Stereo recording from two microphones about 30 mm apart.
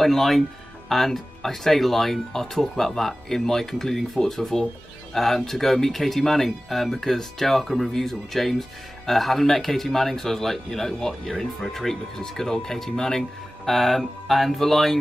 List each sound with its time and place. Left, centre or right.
0.0 s speech: centre
13.7 s mantra: centre